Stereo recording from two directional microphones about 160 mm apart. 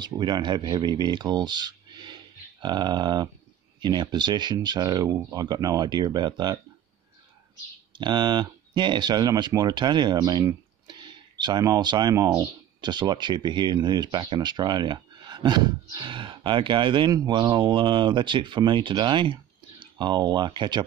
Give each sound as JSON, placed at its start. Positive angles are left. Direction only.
{"t": 0.0, "sound": "speech", "side_deg": -25}
{"t": 8.0, "sound": "speech", "side_deg": -30}